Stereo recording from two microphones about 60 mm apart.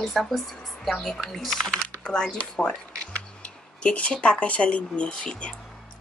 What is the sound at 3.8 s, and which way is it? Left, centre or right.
Speech, centre.